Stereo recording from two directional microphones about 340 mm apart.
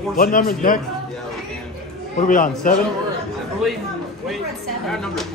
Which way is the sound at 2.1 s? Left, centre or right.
Left.